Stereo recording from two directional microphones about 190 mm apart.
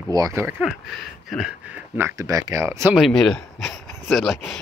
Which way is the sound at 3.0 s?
Centre (ahead or behind).